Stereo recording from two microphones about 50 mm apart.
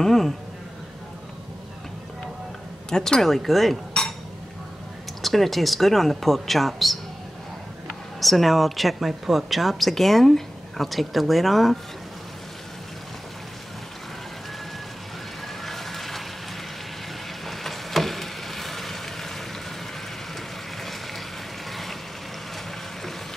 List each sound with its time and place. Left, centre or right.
0.0 s speech: centre
2.9 s speech: centre
3.9 s a sound: centre
5.2 s speech: centre
8.2 s speech: centre
15.4 s a sound: centre
17.5 s vehicle: centre
21.6 s vehicle: centre